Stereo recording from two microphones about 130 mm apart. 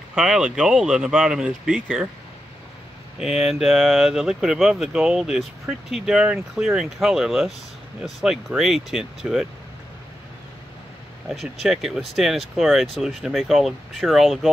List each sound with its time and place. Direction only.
0.1 s speech: 5° right (ahead or behind)
3.2 s speech: 5° right (ahead or behind)
11.2 s speech: 5° right (ahead or behind)